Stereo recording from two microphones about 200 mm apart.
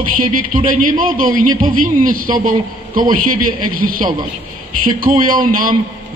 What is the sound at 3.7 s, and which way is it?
A man's voice, 45° right (ahead or behind).